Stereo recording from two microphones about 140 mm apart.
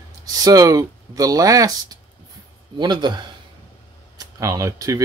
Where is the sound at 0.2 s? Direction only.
25° right (ahead or behind).